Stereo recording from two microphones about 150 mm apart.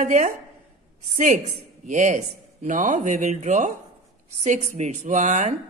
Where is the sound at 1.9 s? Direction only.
55° right (ahead or behind).